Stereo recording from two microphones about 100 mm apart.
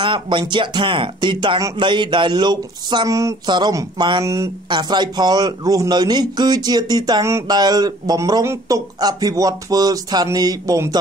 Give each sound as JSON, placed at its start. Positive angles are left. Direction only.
{"t": 0.0, "sound": "speech", "side_deg": -55}
{"t": 3.1, "sound": "speech", "side_deg": -30}
{"t": 3.4, "sound": "speech", "side_deg": -50}
{"t": 4.2, "sound": "speech", "side_deg": -30}
{"t": 4.6, "sound": "speech", "side_deg": -45}